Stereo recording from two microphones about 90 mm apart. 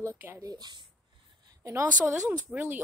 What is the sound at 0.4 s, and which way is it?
Speech, 45° right (ahead or behind).